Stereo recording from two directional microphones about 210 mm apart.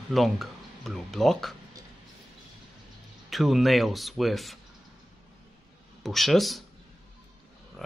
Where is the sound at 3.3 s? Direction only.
Centre (ahead or behind).